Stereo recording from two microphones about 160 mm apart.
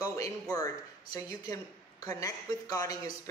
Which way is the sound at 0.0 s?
20° left (ahead or behind).